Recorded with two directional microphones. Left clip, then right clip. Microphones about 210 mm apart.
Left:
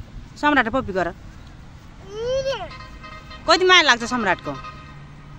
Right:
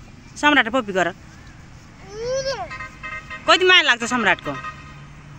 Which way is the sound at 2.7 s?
25° right (ahead or behind).